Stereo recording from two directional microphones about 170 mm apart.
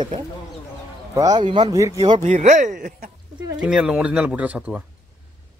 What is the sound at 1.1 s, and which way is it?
Speech, 25° right (ahead or behind).